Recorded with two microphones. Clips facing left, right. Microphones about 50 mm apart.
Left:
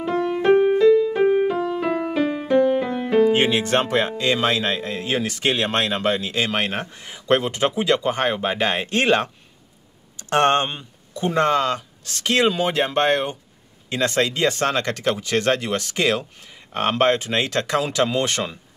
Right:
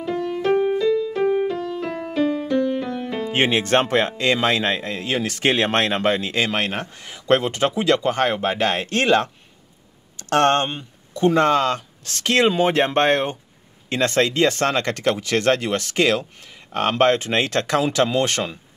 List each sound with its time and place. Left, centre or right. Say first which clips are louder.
0.0 s music: left 3 dB; centre
3.3 s speech: right 1 dB; right
5.0 s speech: even; left
5.3 s speech: right 5 dB; right
6.5 s speech: even; left
7.4 s speech: right 1 dB; right
8.1 s speech: right 1 dB; left
10.8 s speech: right 6 dB; right